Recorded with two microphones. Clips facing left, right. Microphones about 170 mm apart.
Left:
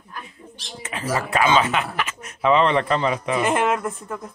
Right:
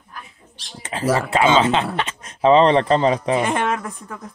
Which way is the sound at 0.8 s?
30° right (ahead or behind).